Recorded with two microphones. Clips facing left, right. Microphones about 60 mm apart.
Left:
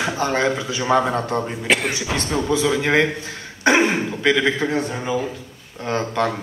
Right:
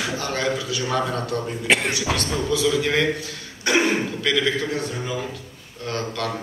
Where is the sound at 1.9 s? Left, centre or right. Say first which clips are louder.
Left 1 dB; left.